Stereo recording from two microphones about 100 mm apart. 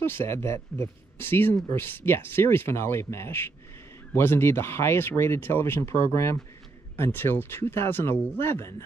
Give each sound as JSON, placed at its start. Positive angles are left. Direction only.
{"t": 0.0, "sound": "speech", "side_deg": 25}